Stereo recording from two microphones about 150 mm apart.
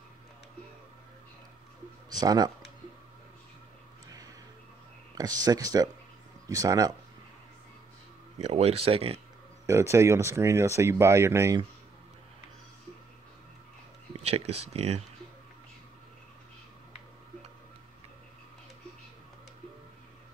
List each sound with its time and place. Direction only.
2.0 s speech: 25° right (ahead or behind)
5.1 s speech: 25° right (ahead or behind)
8.4 s speech: 45° right (ahead or behind)
9.7 s speech: 20° right (ahead or behind)
14.1 s speech: 45° right (ahead or behind)